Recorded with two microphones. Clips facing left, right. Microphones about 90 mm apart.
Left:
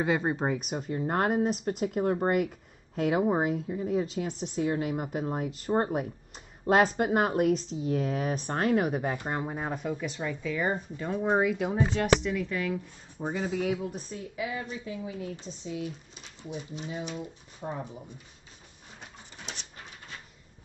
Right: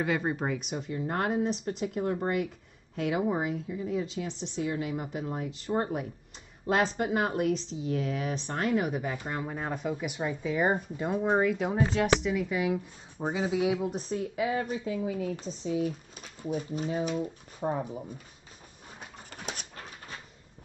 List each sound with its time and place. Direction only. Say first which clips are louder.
0.0 s speech: left 2 dB; 20° left (ahead or behind)
0.6 s speech: left 2 dB; 45° left (ahead or behind)
5.7 s speech: left 2 dB; 30° left (ahead or behind)
6.7 s speech: left 4 dB; 45° left (ahead or behind)
9.5 s speech: even; 5° left (ahead or behind)
9.9 s speech: right 1 dB; 15° right (ahead or behind)
11.1 s speech: even; 5° left (ahead or behind); by 13.7 s 10° right (ahead or behind)
14.1 s speech: right 8 dB; 40° right (ahead or behind); by 15.3 s 55° right (ahead or behind)
15.4 s speech: right 6 dB; 40° right (ahead or behind)
19.3 s dog: right 4 dB; 50° right (ahead or behind)